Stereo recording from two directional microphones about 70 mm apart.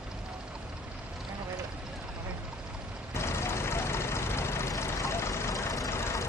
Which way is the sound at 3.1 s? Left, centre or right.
Left.